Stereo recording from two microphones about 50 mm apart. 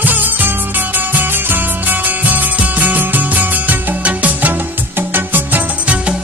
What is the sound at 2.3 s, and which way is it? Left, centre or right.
Music, right.